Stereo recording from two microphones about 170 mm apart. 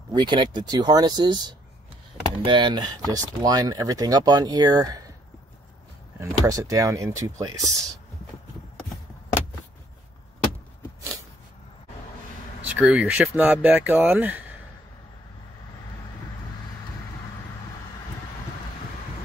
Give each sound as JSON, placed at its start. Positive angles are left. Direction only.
{"t": 0.1, "sound": "speech", "side_deg": -25}
{"t": 2.4, "sound": "speech", "side_deg": -25}
{"t": 6.1, "sound": "speech", "side_deg": -20}
{"t": 12.6, "sound": "speech", "side_deg": -10}